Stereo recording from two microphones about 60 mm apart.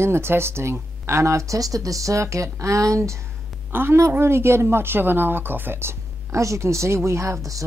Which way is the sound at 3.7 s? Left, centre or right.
Right.